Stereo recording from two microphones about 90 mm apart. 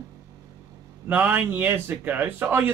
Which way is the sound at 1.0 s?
20° right (ahead or behind).